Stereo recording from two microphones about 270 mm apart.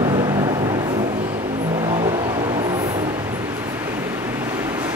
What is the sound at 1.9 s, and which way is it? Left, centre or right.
Vehicle, centre.